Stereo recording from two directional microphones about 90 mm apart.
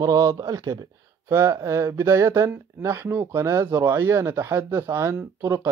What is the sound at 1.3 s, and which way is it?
Speech, 30° right (ahead or behind).